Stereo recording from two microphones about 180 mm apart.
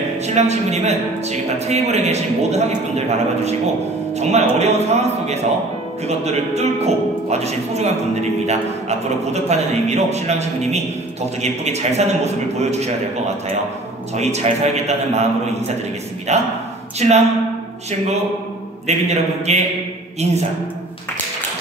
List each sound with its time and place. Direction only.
0.3 s a man's voice: 40° right (ahead or behind)
14.1 s a man's voice: 40° right (ahead or behind)
16.3 s a man's voice: 40° right (ahead or behind)
18.9 s a man's voice: 40° right (ahead or behind)